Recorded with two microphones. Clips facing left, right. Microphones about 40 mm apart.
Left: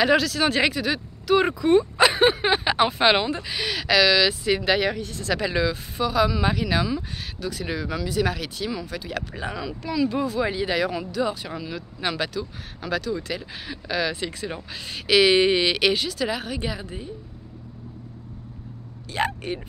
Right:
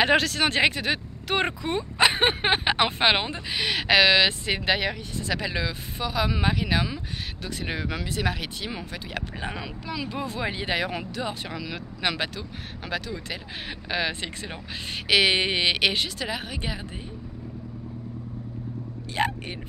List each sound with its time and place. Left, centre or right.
0.0 s speech: right
1.6 s speech: centre
2.1 s speech: right
3.0 s speech: centre
4.6 s speech: centre; by 8.2 s right
8.2 s speech: right
11.7 s speech: right
12.2 s speech: right
16.3 s speech: centre
19.1 s speech: centre